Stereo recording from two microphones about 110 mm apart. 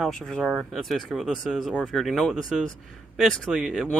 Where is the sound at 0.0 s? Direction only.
Centre (ahead or behind).